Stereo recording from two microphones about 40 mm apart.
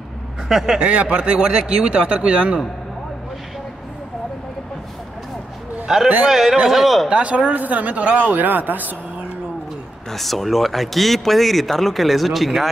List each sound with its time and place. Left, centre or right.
0.5 s a man's voice: centre
0.7 s speech: right
5.9 s a man's voice: centre
6.7 s speech: centre
7.1 s speech: right
8.3 s speech: right
10.1 s speech: centre